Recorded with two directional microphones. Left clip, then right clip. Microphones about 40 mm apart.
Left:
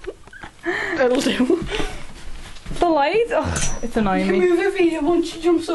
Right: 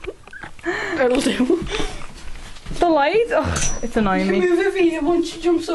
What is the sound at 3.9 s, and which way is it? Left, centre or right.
Speech, right.